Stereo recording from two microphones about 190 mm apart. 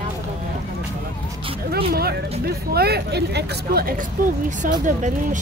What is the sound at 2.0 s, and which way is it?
Speech, 55° right (ahead or behind).